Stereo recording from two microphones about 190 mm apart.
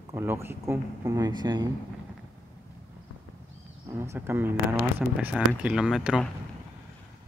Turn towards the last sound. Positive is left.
turn(degrees=0)  # may be behind; listen again after turning